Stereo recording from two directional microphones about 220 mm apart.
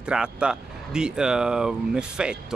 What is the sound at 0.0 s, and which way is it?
Speech, 5° right (ahead or behind).